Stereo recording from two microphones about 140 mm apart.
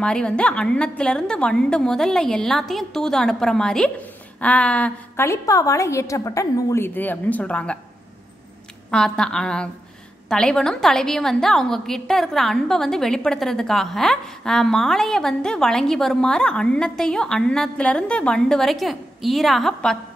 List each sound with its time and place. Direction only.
0.0 s a woman's voice: 5° left (ahead or behind)
5.2 s a woman's voice: 20° left (ahead or behind)
8.9 s a woman's voice: 5° left (ahead or behind)